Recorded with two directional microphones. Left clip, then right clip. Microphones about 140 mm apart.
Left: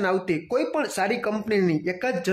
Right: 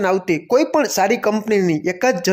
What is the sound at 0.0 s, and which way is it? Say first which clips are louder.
Speech: right 6 dB; 35° right (ahead or behind).